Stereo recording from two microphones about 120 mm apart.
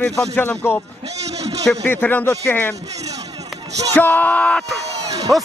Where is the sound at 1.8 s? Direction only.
15° left (ahead or behind).